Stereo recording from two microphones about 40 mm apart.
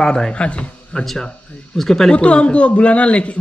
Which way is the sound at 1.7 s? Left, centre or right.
Centre.